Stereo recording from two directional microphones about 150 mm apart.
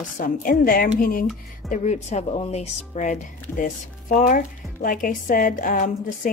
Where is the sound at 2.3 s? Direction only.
40° left (ahead or behind).